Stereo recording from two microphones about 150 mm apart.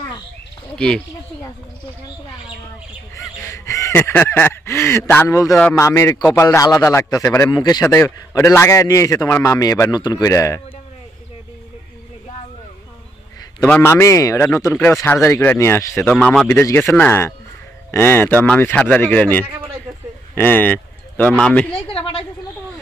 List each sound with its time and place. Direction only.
0.7 s speech: 5° left (ahead or behind)
3.4 s a man's voice: 20° left (ahead or behind)
7.8 s a man's voice: 15° left (ahead or behind)
13.6 s a man's voice: 10° left (ahead or behind)
21.8 s a woman's voice: 35° left (ahead or behind)